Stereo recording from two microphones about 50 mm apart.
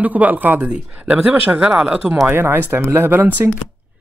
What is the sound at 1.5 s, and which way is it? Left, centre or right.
Speech, centre.